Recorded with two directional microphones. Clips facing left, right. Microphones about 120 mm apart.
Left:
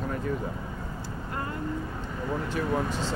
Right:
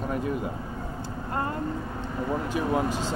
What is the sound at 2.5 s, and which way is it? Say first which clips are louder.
Speech: right 2 dB; 15° right (ahead or behind).